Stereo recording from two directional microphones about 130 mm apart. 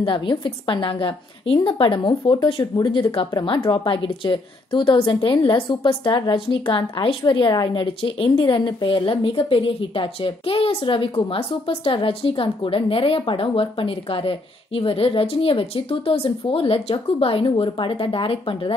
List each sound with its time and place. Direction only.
0.0 s a woman's voice: 40° left (ahead or behind)